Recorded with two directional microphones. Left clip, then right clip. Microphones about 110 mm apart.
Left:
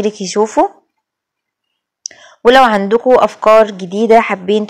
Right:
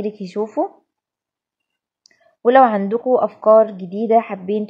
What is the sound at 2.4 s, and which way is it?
Speech, 30° left (ahead or behind).